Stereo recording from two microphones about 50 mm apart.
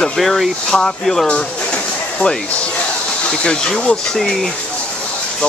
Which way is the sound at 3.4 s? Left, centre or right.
Centre.